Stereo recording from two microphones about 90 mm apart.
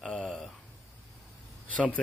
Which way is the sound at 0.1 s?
15° left (ahead or behind).